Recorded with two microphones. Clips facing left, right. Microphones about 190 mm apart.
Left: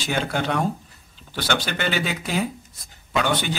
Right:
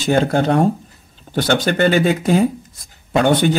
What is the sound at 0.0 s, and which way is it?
Speech, 45° right (ahead or behind).